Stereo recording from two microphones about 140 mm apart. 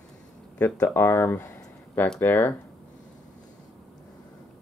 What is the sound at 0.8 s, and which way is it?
Speech, 15° left (ahead or behind).